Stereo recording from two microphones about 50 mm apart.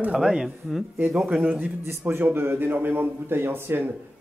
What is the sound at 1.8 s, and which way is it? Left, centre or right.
A man's voice, right.